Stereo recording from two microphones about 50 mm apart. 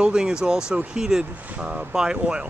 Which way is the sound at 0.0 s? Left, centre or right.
Centre.